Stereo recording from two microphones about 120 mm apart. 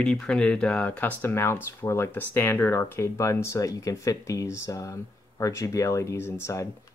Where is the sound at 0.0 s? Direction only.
5° left (ahead or behind).